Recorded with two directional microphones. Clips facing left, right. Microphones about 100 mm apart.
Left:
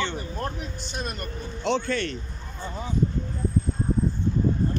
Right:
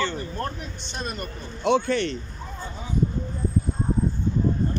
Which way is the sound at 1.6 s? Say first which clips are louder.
Right 4 dB; 15° right (ahead or behind).